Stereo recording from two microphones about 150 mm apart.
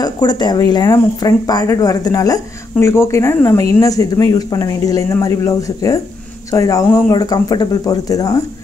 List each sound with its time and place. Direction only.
0.0 s speech: 30° left (ahead or behind)